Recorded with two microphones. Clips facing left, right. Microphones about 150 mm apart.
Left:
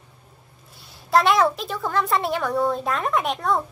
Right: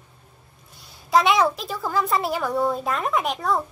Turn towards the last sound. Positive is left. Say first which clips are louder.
# left 1 dB
turn(degrees=0)  # may be behind; listen again after turning